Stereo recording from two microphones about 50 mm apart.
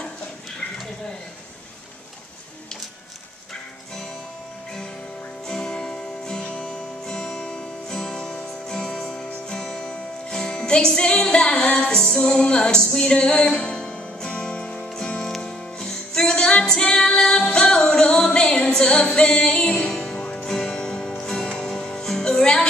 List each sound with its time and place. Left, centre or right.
5.5 s music: centre
15.2 s music: centre